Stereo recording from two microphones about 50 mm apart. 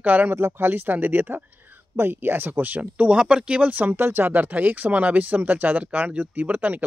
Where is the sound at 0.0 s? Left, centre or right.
Right.